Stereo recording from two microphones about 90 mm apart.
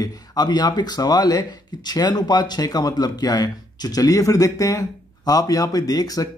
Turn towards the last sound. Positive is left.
turn(degrees=45)  # may be behind; listen again after turning